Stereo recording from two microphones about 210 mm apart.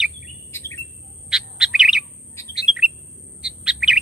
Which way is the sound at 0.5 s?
15° left (ahead or behind).